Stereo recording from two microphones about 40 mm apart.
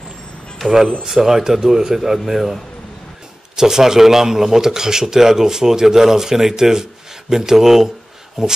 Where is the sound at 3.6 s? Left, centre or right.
Centre.